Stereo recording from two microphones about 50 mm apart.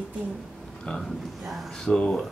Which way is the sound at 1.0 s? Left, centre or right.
Centre.